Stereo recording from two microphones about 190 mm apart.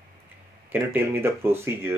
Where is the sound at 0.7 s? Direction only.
10° right (ahead or behind).